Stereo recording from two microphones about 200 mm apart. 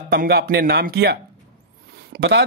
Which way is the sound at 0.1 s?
50° right (ahead or behind).